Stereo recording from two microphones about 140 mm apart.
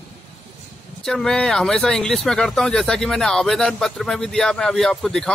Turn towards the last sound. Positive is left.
turn(degrees=0)  # may be behind; listen again after turning